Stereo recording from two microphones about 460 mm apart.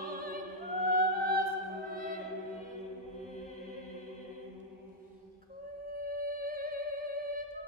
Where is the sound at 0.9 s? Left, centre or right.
Centre.